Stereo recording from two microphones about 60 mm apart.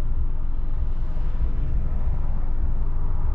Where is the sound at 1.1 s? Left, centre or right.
Right.